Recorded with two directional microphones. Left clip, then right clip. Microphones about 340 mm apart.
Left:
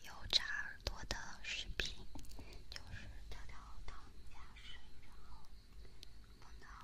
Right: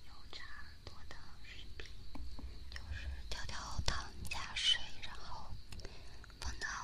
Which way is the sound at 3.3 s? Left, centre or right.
Centre.